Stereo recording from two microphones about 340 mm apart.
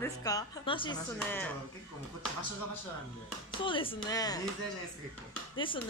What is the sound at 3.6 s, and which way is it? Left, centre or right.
Speech, centre.